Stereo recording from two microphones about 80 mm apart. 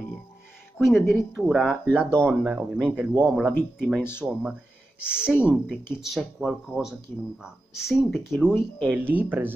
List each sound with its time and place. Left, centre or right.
0.7 s speech: centre
2.0 s speech: centre
2.4 s speech: centre
5.9 s speech: centre
9.0 s speech: right